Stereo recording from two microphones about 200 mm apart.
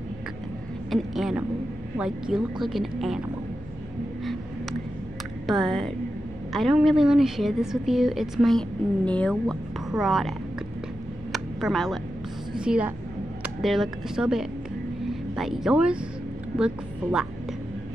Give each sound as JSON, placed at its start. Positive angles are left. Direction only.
{"t": 0.8, "sound": "a woman's voice", "side_deg": 0}
{"t": 5.5, "sound": "a woman's voice", "side_deg": 0}
{"t": 11.3, "sound": "a sound", "side_deg": 0}
{"t": 12.5, "sound": "a woman's voice", "side_deg": -5}